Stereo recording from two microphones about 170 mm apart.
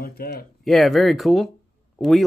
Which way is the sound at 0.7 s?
Centre (ahead or behind).